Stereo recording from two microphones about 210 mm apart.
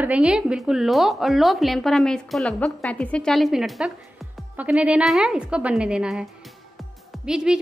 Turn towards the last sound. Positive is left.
turn(degrees=-5)  # may be behind; listen again after turning